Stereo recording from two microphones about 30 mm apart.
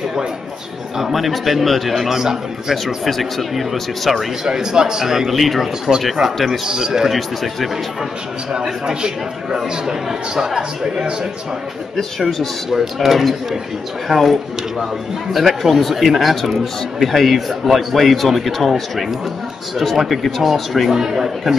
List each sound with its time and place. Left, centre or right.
1.1 s a man's voice: centre
2.0 s speech: centre
2.7 s a man's voice: centre
4.5 s a man's voice: right
5.3 s a man's voice: centre
6.7 s speech: centre
7.1 s a man's voice: centre
10.3 s speech: centre
12.3 s a man's voice: centre
15.3 s a man's voice: centre
20.9 s speech: centre